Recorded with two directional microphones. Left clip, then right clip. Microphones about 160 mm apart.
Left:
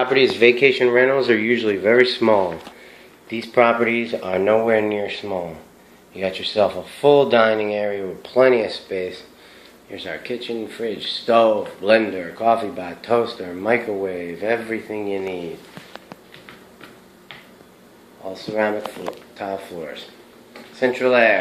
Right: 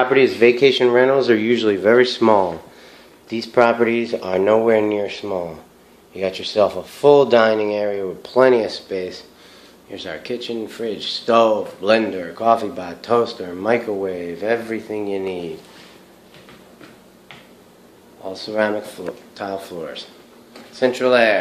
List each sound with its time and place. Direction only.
0.0 s speech: 5° right (ahead or behind)
0.6 s speech: 15° right (ahead or behind)
18.2 s speech: 15° right (ahead or behind)